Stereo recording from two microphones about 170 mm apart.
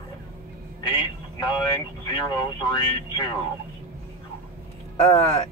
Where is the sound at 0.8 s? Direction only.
25° left (ahead or behind).